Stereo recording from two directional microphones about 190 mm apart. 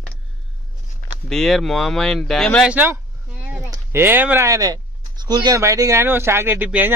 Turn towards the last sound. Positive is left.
turn(degrees=-10)  # may be behind; listen again after turning